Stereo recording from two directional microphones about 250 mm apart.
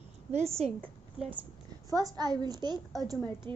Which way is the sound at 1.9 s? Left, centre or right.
Centre.